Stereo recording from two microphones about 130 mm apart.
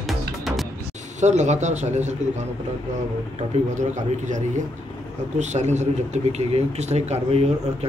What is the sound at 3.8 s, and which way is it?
A man's voice, 65° right (ahead or behind).